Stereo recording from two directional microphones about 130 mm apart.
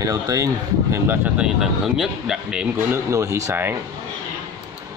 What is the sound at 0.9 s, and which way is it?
Speech, 15° right (ahead or behind).